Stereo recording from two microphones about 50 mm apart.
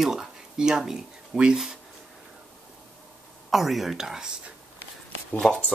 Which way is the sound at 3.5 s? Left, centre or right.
Centre.